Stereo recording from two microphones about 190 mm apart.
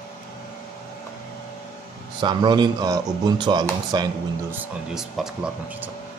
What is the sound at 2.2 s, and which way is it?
A man's voice, 25° right (ahead or behind).